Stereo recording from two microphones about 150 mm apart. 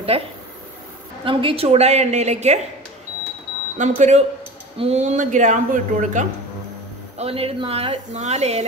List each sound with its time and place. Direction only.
0.1 s speech: 40° right (ahead or behind)
3.7 s a man's voice: 55° right (ahead or behind)
7.2 s speech: 40° right (ahead or behind)